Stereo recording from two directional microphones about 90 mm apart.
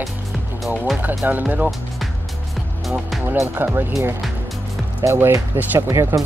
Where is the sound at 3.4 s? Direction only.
25° right (ahead or behind).